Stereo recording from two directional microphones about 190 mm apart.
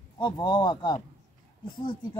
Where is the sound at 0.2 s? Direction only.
25° left (ahead or behind).